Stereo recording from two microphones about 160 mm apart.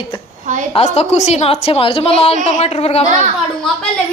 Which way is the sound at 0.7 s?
40° left (ahead or behind).